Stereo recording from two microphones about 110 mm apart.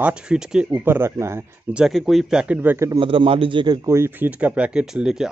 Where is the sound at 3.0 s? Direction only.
50° right (ahead or behind).